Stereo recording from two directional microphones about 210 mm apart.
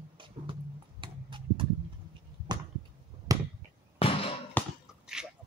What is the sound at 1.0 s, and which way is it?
Tick-tock, 25° right (ahead or behind).